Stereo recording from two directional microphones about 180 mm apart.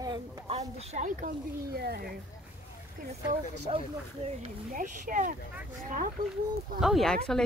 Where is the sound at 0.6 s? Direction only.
40° right (ahead or behind); by 2.1 s 60° right (ahead or behind).